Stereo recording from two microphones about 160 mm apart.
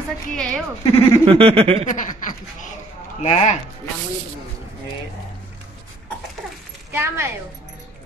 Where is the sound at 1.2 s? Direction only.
35° right (ahead or behind).